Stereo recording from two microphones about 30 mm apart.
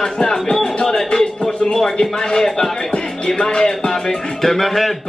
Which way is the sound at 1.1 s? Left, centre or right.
Left.